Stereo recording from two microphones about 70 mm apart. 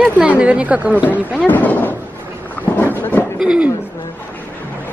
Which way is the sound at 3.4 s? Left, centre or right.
Centre.